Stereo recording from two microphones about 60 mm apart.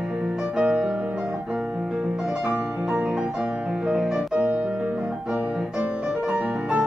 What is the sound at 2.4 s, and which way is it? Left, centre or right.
Music, centre.